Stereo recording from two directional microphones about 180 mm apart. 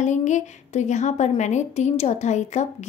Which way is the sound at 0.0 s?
40° left (ahead or behind).